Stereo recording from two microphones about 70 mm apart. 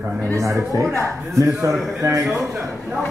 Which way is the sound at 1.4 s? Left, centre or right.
Right.